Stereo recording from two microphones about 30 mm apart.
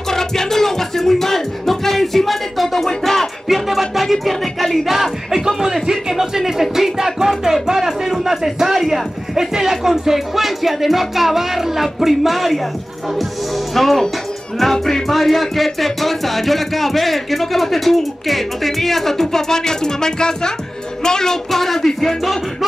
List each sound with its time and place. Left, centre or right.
0.1 s music: centre
3.0 s a sound: centre
3.6 s music: centre
4.0 s speech: centre
13.7 s speech: centre
14.6 s a sound: centre
15.0 s speech: centre; by 20.5 s left
21.0 s child singing: left
21.5 s a sound: centre